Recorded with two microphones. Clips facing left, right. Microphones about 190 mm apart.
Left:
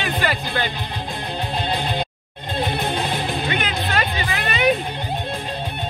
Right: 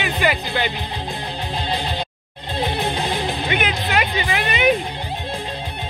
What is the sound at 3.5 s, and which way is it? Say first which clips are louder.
Music: right 2 dB; 15° right (ahead or behind).